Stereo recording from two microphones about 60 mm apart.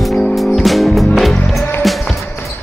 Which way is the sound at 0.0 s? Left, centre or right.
Centre.